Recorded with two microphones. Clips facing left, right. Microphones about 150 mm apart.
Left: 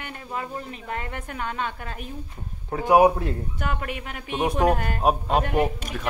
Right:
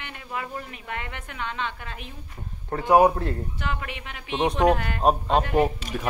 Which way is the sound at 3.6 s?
50° left (ahead or behind).